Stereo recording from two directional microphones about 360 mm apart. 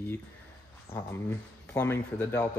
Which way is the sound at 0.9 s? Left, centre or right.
Centre.